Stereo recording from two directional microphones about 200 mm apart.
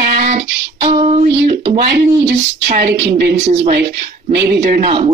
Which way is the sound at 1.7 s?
55° right (ahead or behind).